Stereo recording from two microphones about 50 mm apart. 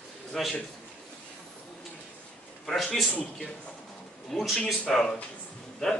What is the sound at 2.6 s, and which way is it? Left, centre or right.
Speech, centre.